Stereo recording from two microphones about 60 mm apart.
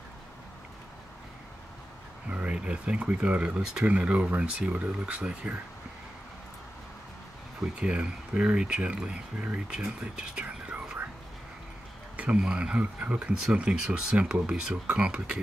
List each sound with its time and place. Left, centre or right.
2.2 s speech: centre
7.7 s speech: centre
10.4 s whispering: right
12.4 s speech: centre